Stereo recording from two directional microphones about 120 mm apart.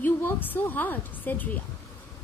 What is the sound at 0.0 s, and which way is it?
A woman's voice, 15° left (ahead or behind).